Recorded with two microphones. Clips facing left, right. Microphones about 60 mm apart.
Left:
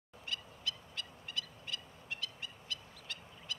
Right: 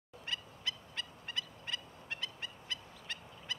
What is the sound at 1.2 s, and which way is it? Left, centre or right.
Fowl, right.